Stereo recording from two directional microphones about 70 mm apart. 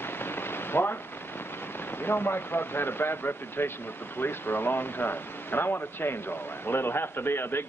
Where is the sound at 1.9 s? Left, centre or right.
Left.